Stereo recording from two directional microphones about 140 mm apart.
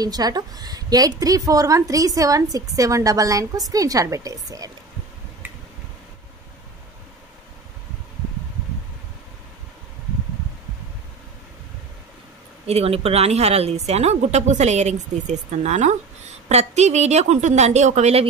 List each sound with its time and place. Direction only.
0.0 s a woman's voice: 30° right (ahead or behind)
12.6 s a woman's voice: 45° right (ahead or behind)